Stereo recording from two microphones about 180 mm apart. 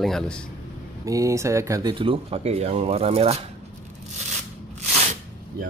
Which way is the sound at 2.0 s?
30° right (ahead or behind).